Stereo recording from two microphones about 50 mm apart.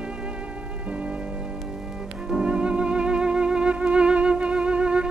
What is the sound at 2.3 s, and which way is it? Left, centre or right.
Music, centre.